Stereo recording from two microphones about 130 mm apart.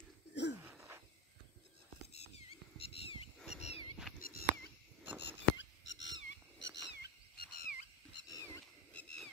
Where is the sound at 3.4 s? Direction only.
5° right (ahead or behind).